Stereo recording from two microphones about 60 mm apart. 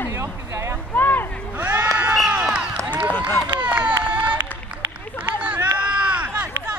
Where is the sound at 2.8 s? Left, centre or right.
Right.